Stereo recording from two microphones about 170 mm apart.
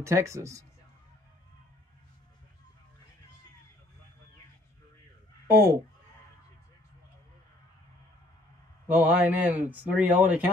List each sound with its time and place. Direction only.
0.0 s speech: 15° right (ahead or behind)
5.5 s speech: 15° right (ahead or behind)
8.9 s speech: 10° right (ahead or behind)